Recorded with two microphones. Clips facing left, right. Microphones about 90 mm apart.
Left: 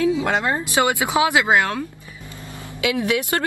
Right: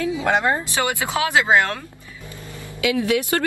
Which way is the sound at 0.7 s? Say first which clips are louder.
Left 4 dB; 20° left (ahead or behind).